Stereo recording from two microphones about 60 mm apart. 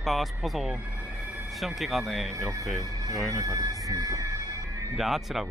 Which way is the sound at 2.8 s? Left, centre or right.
Right.